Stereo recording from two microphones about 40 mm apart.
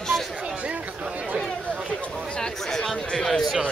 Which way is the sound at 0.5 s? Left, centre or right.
Right.